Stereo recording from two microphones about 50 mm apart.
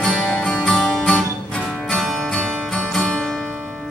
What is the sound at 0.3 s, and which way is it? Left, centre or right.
Music, left.